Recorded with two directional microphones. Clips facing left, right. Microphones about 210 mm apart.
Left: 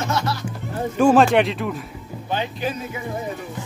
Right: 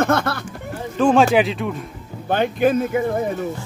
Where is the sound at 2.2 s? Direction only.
55° right (ahead or behind).